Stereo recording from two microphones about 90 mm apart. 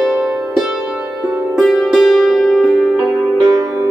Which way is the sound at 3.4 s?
50° right (ahead or behind).